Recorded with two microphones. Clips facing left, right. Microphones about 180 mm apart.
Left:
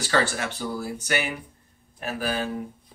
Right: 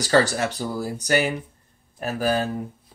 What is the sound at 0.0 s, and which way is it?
Speech, 40° right (ahead or behind).